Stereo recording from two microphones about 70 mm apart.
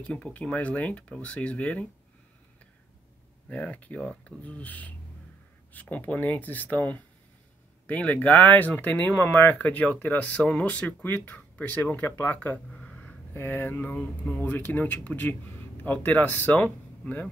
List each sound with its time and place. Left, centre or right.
0.0 s speech: centre
3.4 s speech: centre
13.3 s speech: left